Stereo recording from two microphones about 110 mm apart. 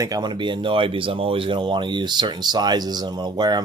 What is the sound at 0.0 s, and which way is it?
Speech, 40° right (ahead or behind).